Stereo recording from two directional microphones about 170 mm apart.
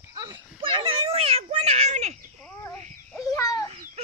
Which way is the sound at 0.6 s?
35° right (ahead or behind).